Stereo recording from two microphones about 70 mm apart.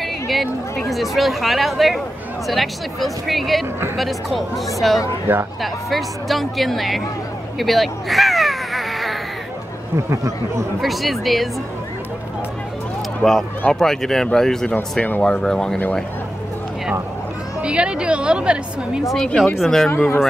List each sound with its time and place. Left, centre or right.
0.0 s speech: centre
7.5 s crow: centre
9.9 s speech: right
10.8 s speech: centre
13.2 s speech: centre
15.0 s speech: left
15.2 s speech: centre
17.6 s a woman's voice: centre
19.1 s speech: centre